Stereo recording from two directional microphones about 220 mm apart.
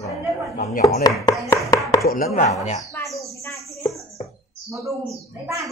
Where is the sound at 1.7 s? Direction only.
15° left (ahead or behind).